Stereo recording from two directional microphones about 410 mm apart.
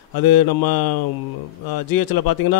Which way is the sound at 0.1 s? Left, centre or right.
Left.